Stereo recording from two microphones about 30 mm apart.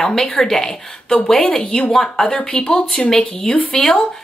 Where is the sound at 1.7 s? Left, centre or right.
Left.